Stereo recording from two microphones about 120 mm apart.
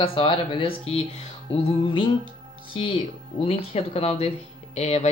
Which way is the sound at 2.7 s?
45° left (ahead or behind).